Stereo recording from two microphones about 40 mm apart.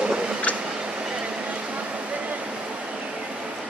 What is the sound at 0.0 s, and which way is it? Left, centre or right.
Vehicle, right.